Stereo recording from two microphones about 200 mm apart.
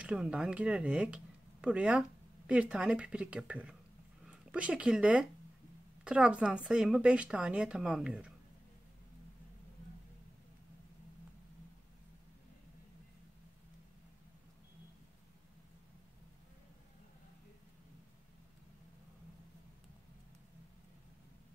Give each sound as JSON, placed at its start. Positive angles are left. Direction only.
{"t": 0.0, "sound": "a woman's voice", "side_deg": -5}